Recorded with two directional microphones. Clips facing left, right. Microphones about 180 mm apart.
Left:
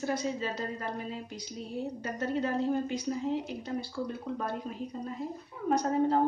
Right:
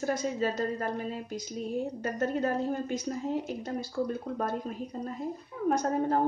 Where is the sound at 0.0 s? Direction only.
45° right (ahead or behind).